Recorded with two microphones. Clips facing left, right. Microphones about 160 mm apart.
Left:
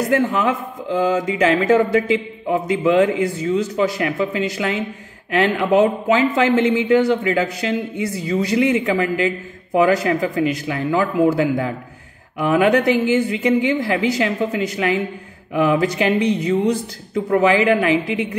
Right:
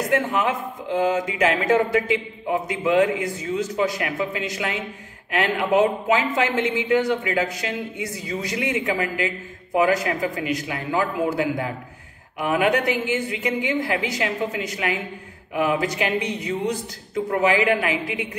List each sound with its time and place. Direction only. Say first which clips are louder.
0.1 s a man's voice: left 3 dB; 35° left (ahead or behind)